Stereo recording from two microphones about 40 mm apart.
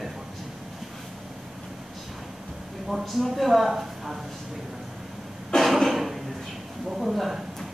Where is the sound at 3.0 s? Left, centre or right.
Centre.